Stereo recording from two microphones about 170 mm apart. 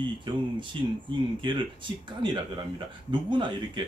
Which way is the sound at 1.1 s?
30° right (ahead or behind).